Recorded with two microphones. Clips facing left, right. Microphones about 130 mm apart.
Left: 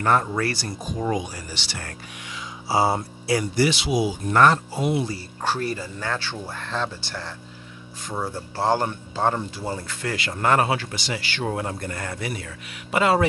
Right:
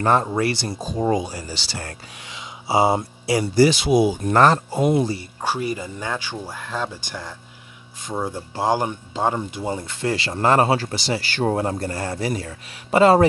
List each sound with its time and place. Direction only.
0.0 s speech: 25° right (ahead or behind)
3.5 s speech: 40° right (ahead or behind)
5.4 s speech: 10° right (ahead or behind); by 13.3 s 35° right (ahead or behind)